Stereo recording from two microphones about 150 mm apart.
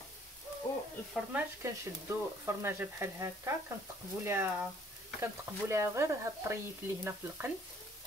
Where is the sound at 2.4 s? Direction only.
15° right (ahead or behind).